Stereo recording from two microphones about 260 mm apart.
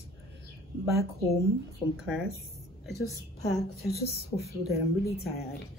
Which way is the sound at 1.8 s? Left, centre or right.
Centre.